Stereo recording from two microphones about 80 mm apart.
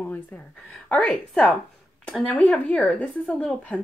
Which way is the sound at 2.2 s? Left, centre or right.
Centre.